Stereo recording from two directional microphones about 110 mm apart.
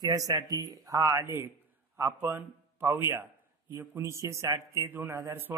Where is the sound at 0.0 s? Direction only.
35° right (ahead or behind); by 4.0 s 15° right (ahead or behind).